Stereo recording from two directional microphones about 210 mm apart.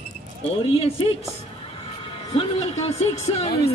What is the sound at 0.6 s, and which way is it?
Speech, 25° left (ahead or behind).